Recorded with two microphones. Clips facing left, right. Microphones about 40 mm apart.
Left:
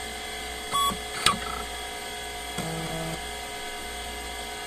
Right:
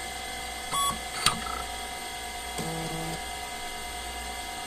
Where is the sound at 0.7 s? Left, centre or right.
Left.